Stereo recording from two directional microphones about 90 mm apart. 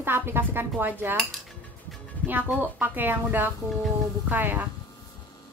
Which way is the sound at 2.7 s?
20° right (ahead or behind).